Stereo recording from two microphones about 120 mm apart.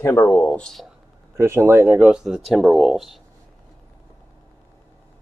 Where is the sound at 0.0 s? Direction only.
20° left (ahead or behind).